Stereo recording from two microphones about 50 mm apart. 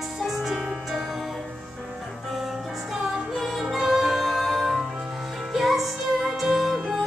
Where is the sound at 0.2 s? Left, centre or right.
Centre.